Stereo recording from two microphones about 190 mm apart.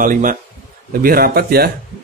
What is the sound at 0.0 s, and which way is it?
Speech, 45° right (ahead or behind).